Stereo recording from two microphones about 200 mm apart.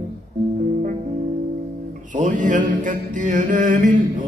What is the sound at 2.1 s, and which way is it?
Music, 40° right (ahead or behind).